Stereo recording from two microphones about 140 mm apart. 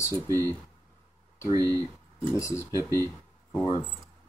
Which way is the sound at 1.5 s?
25° right (ahead or behind).